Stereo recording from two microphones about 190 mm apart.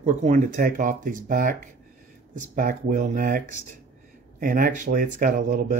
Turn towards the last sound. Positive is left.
turn(degrees=-45)  # may be behind; listen again after turning